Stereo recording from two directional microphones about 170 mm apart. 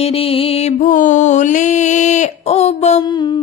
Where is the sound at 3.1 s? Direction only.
25° left (ahead or behind).